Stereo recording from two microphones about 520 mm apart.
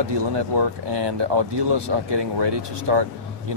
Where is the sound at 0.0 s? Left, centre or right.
Right.